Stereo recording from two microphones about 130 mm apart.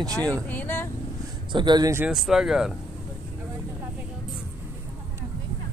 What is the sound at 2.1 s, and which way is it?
Speech, centre (ahead or behind).